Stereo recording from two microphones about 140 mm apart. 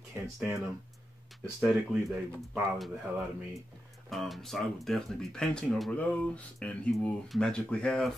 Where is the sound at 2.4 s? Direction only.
5° right (ahead or behind).